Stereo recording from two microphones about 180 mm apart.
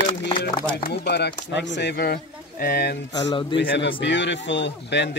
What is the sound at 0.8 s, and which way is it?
Speech, 60° left (ahead or behind).